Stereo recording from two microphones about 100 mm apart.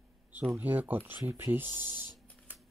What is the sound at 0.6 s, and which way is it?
Speech, 20° right (ahead or behind).